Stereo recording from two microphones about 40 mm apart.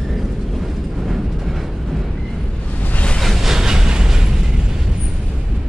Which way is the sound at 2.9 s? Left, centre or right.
Left.